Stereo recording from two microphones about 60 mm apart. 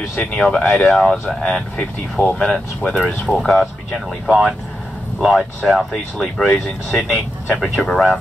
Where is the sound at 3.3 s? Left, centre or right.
Centre.